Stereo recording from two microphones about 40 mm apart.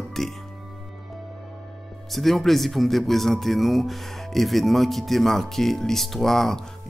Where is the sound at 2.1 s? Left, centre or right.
Centre.